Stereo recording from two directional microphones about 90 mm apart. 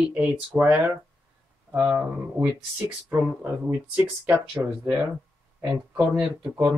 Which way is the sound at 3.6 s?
15° right (ahead or behind).